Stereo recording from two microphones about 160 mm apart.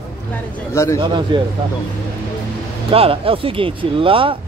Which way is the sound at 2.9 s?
35° right (ahead or behind).